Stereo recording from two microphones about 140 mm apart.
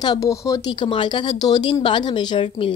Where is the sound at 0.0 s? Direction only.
25° left (ahead or behind).